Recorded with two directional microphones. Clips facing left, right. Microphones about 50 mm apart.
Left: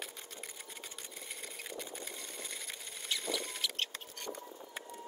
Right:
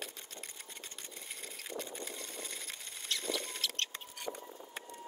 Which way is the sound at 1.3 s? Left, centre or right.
Centre.